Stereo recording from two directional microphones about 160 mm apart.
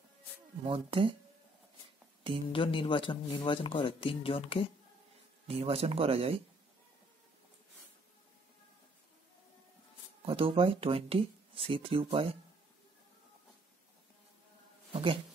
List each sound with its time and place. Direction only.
0.7 s speech: 35° right (ahead or behind)
2.5 s speech: 30° left (ahead or behind)
5.5 s speech: 40° right (ahead or behind)
10.2 s speech: 35° right (ahead or behind)
14.9 s a sound: 35° right (ahead or behind)